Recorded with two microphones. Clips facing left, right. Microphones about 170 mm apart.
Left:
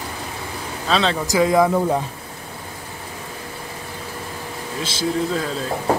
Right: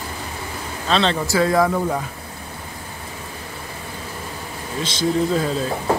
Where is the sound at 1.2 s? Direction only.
15° left (ahead or behind).